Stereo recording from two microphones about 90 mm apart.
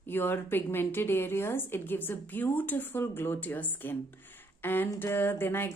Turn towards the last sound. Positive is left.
turn(degrees=25)  # may be behind; listen again after turning